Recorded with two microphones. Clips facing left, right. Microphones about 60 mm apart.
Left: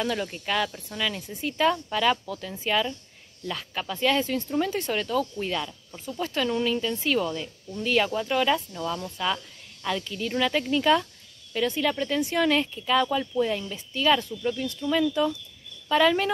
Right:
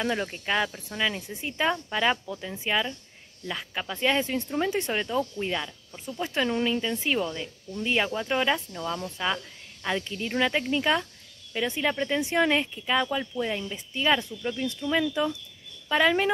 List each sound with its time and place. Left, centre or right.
0.0 s speech: right